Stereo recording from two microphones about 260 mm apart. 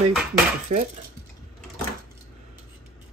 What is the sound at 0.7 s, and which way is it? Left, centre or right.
Speech, right.